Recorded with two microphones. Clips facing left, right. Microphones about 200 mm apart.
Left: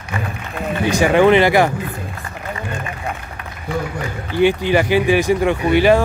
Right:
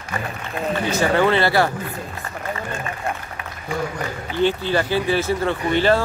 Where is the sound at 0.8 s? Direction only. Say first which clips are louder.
Left 6 dB; 15° left (ahead or behind).